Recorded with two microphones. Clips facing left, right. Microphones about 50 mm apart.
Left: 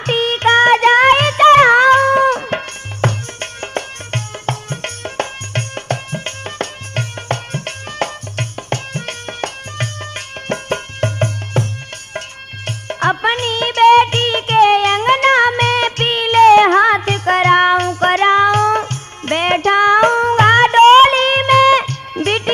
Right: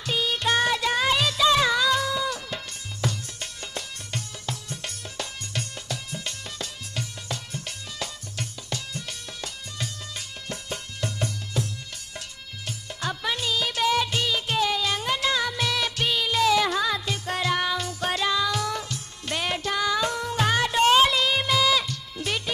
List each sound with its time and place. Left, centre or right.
0.0 s music: left
12.6 s music: left